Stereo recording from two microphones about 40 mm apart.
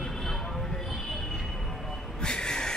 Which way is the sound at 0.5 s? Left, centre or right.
Centre.